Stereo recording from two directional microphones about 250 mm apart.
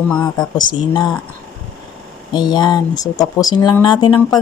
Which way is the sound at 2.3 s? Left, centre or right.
Centre.